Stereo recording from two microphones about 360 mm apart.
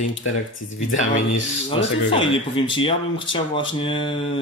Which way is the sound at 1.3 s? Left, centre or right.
Centre.